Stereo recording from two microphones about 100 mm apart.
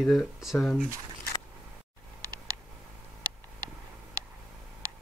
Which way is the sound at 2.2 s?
35° right (ahead or behind).